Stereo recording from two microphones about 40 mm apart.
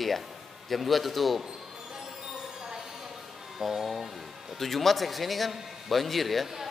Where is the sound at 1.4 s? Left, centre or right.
Centre.